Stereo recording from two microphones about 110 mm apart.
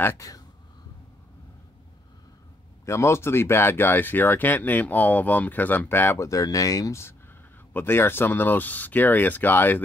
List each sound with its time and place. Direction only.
0.0 s speech: 25° left (ahead or behind)
2.8 s speech: 25° left (ahead or behind)